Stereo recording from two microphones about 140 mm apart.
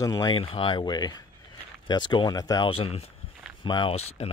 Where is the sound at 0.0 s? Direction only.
25° left (ahead or behind).